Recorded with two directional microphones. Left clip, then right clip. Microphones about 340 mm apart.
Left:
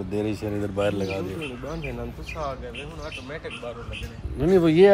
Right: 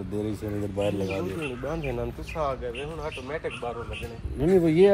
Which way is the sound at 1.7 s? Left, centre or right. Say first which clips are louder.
Right 3 dB; right.